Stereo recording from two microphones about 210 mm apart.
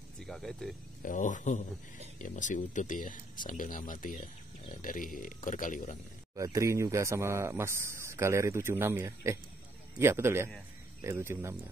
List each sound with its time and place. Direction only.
0.3 s speech: centre (ahead or behind)
1.0 s speech: 40° left (ahead or behind)
6.3 s speech: 15° right (ahead or behind)